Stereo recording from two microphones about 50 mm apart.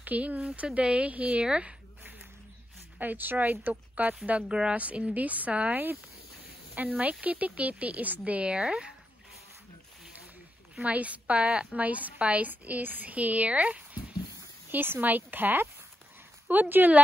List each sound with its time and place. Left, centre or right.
0.0 s a woman's voice: right
1.4 s a woman's voice: centre
3.0 s a woman's voice: right
4.3 s a woman's voice: right
8.5 s speech: centre
10.8 s a woman's voice: right
14.7 s a woman's voice: right